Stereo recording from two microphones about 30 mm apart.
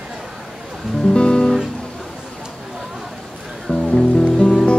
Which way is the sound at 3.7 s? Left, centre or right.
Left.